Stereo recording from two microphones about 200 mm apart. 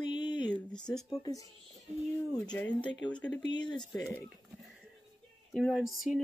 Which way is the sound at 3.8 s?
Centre (ahead or behind).